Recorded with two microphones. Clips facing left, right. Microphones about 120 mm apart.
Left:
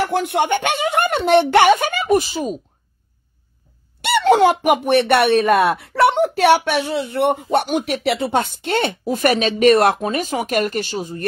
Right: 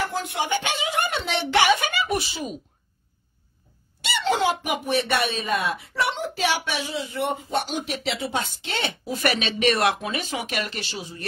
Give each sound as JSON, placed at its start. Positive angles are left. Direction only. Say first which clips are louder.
{"t": 0.0, "sound": "speech", "louder": "left 8 dB", "side_deg": 65}
{"t": 4.0, "sound": "speech", "louder": "left 10 dB", "side_deg": 60}